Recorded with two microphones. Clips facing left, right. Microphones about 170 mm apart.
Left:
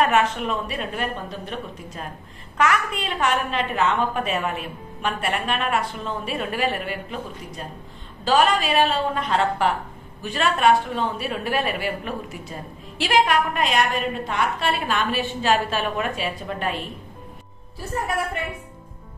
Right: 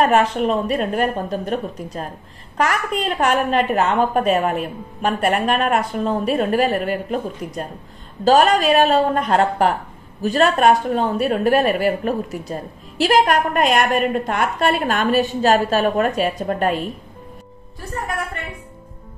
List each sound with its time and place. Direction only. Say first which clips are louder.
0.0 s a woman's voice: right 4 dB; 35° right (ahead or behind)